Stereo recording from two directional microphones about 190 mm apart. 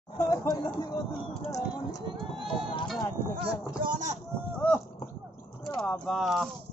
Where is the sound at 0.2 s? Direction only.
20° left (ahead or behind).